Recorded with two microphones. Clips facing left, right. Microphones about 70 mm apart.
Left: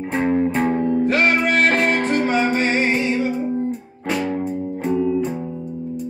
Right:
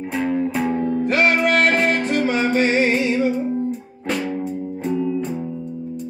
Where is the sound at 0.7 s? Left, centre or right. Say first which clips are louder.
Left 2 dB; centre.